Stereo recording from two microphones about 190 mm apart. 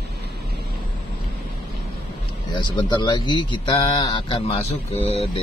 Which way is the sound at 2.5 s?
25° left (ahead or behind).